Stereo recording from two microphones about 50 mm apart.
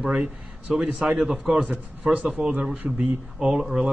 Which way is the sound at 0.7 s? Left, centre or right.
Centre.